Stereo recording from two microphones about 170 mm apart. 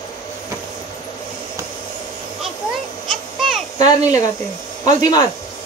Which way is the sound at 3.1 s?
Centre (ahead or behind).